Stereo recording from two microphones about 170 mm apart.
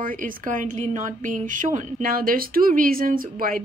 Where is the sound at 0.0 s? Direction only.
50° right (ahead or behind).